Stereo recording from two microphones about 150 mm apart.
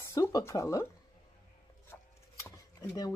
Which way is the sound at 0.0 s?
20° left (ahead or behind).